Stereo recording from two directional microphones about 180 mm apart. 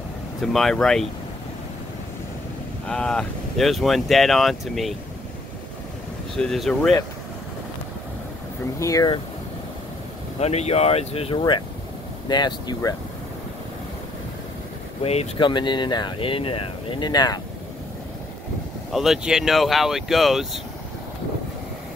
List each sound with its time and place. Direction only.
0.4 s speech: centre (ahead or behind)
2.9 s speech: 5° left (ahead or behind)
6.3 s speech: centre (ahead or behind)
8.7 s speech: 20° left (ahead or behind)
10.4 s speech: 35° left (ahead or behind)
15.0 s speech: 30° left (ahead or behind)
18.9 s speech: centre (ahead or behind)